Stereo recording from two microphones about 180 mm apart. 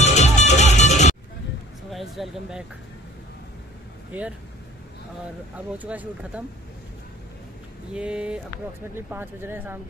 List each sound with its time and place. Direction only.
0.0 s music: 40° left (ahead or behind)
1.9 s speech: centre (ahead or behind)
5.7 s speech: 10° right (ahead or behind)
7.9 s speech: 5° right (ahead or behind)